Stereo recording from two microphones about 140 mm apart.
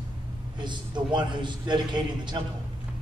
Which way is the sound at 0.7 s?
35° right (ahead or behind).